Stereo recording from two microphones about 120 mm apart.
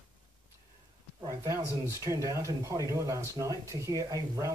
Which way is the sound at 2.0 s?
25° right (ahead or behind).